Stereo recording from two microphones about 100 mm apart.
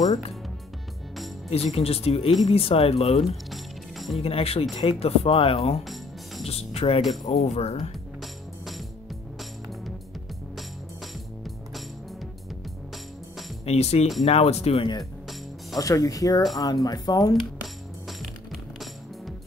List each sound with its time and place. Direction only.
1.5 s speech: 90° left
3.4 s music: centre (ahead or behind)
4.2 s speech: 75° left (ahead or behind)
6.4 s speech: 90° left
8.2 s music: centre (ahead or behind)
13.7 s speech: 90° left
15.8 s speech: 35° left (ahead or behind)
18.0 s music: centre (ahead or behind)